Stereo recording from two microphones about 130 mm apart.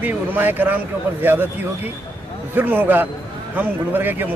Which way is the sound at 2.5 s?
15° right (ahead or behind).